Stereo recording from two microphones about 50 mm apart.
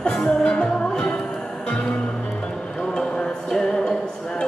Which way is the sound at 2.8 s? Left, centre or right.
Centre.